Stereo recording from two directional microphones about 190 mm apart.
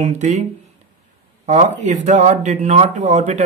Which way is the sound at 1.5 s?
40° right (ahead or behind).